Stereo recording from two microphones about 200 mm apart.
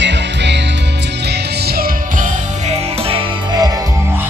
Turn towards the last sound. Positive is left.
turn(degrees=-20)  # may be behind; listen again after turning